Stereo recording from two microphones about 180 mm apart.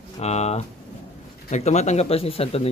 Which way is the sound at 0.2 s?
35° left (ahead or behind).